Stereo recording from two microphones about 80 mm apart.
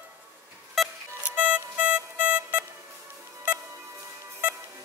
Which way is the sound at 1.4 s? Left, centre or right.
Centre.